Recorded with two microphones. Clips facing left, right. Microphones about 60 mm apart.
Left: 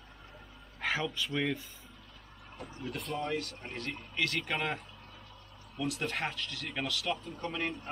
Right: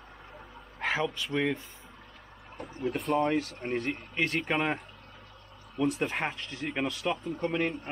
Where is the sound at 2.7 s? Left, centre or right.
Right.